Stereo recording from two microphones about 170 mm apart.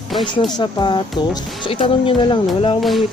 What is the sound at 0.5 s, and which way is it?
Speech, 25° left (ahead or behind).